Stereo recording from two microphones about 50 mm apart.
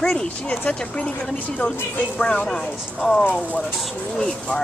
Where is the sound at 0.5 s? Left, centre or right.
Left.